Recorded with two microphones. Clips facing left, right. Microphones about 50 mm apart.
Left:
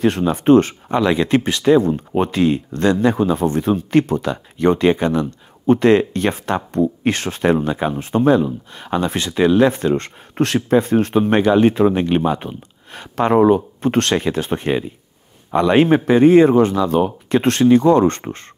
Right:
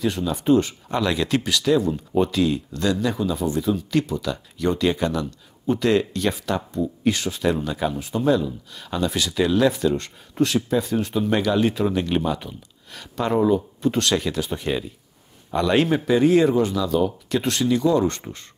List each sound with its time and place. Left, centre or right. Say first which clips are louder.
0.0 s speech: left 7 dB; left
0.8 s speech: left 6 dB; left
13.1 s a man's voice: left 6 dB; left